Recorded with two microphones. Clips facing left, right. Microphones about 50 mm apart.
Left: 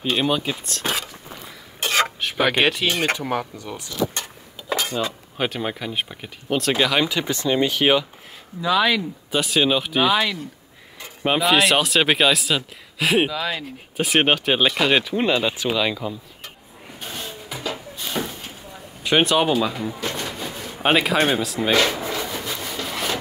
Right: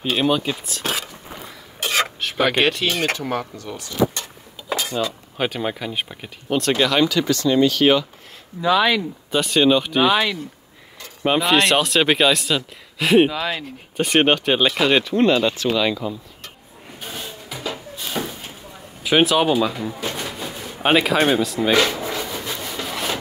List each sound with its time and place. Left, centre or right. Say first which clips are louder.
0.0 s speech: right 2 dB; centre
5.4 s speech: right 1 dB; centre
7.1 s speech: right 3 dB; left
8.5 s speech: right 2 dB; right
9.3 s speech: right 3 dB; centre
11.2 s speech: right 1 dB; centre
17.0 s a sound: even; centre
22.0 s rub: even; centre
22.8 s a sound: right 1 dB; centre